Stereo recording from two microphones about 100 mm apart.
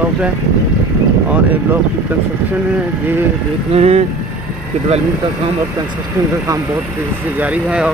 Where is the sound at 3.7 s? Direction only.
90° right.